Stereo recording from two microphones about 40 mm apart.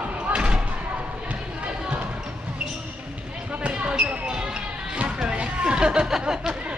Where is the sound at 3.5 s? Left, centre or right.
Right.